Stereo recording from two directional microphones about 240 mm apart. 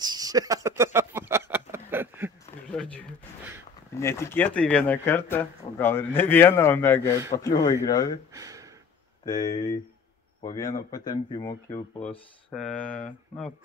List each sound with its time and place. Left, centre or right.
0.0 s speech: centre
0.9 s a sound: centre
2.4 s a sound: centre
3.9 s speech: centre
8.3 s gasp: centre
9.2 s speech: centre
12.0 s speech: centre